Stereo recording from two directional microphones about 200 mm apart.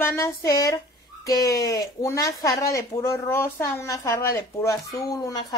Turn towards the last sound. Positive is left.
turn(degrees=15)  # may be behind; listen again after turning